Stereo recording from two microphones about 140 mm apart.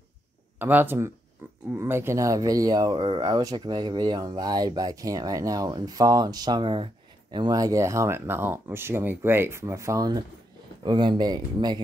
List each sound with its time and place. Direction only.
0.6 s speech: 15° right (ahead or behind)
1.4 s a sound: 15° right (ahead or behind)
1.8 s speech: 20° right (ahead or behind)